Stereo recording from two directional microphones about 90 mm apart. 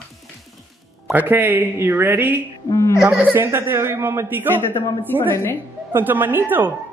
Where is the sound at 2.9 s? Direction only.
10° right (ahead or behind).